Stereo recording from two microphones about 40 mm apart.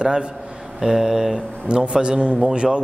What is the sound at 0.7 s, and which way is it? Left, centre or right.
A man's voice, centre.